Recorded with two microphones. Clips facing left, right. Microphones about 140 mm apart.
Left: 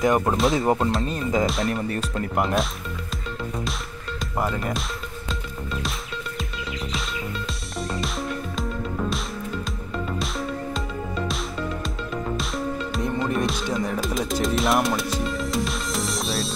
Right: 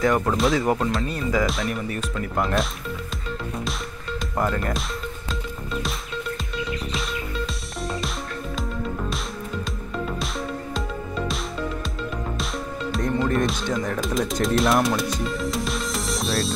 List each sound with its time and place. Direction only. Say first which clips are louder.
0.0 s speech: even; 20° left (ahead or behind)
1.4 s speech: left 1 dB; centre (ahead or behind)
1.7 s speech: left 2 dB; 30° left (ahead or behind)
2.3 s speech: even; centre (ahead or behind)
4.4 s speech: right 1 dB; 5° left (ahead or behind)
5.3 s music: right 1 dB; centre (ahead or behind)
10.0 s music: left 2 dB; centre (ahead or behind)
12.4 s music: left 2 dB; centre (ahead or behind)